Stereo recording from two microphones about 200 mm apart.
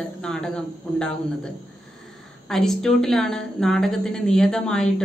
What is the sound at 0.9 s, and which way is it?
A woman's voice, 5° left (ahead or behind).